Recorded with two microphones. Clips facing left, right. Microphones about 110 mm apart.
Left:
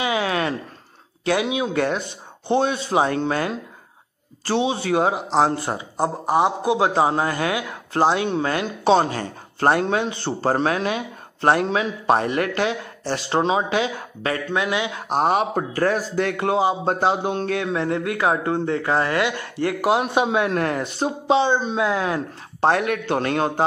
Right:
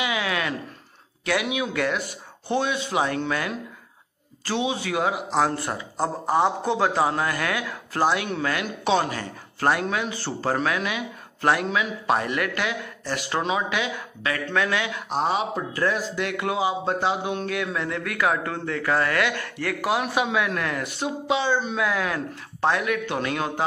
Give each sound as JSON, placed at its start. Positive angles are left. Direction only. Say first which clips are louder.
{"t": 0.0, "sound": "a sound", "louder": "left 4 dB", "side_deg": 35}
{"t": 1.2, "sound": "a man's voice", "louder": "left 4 dB", "side_deg": 30}
{"t": 14.5, "sound": "a man's voice", "louder": "left 1 dB", "side_deg": 20}
{"t": 15.0, "sound": "a man's voice", "louder": "left 6 dB", "side_deg": 55}
{"t": 22.7, "sound": "speech", "louder": "left 4 dB", "side_deg": 50}